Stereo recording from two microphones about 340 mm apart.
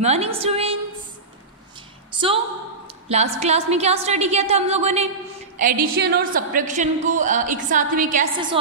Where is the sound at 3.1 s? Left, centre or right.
Centre.